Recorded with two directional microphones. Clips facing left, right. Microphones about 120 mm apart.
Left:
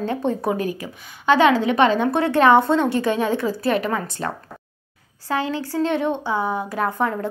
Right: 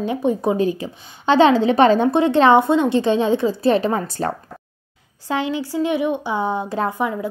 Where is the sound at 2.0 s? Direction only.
20° right (ahead or behind).